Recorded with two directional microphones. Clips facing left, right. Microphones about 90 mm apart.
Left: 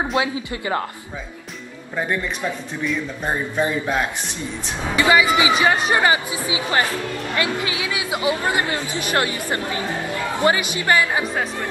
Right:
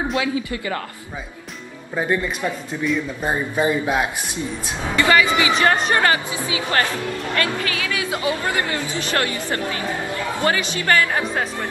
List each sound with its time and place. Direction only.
0.1 s speech: 30° left (ahead or behind)
2.8 s a man's voice: centre (ahead or behind)
4.9 s speech: 15° left (ahead or behind)